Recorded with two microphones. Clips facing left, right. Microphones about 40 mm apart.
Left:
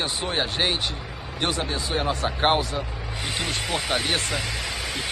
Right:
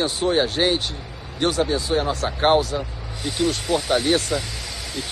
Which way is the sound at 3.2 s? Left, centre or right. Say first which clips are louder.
Right 5 dB; left.